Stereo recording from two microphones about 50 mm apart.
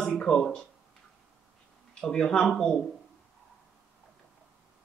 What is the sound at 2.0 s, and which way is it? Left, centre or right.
Speech, centre.